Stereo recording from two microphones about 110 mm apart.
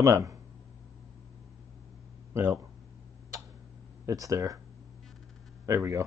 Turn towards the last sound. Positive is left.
turn(degrees=-30)  # may be behind; listen again after turning